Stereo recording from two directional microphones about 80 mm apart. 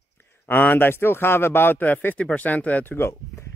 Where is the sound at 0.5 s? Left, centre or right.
Left.